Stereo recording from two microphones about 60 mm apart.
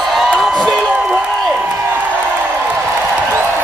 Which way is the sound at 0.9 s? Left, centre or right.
Right.